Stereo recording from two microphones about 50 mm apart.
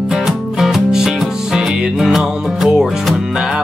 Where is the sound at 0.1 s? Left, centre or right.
Centre.